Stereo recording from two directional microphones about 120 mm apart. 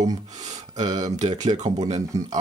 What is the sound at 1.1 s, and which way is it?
Speech, 85° right.